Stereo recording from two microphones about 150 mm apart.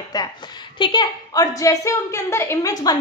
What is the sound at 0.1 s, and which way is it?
A woman's voice, 25° left (ahead or behind).